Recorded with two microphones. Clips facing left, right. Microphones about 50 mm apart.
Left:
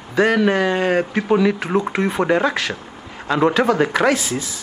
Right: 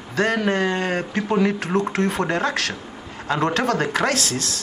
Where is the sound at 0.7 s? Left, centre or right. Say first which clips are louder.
Left 5 dB; centre.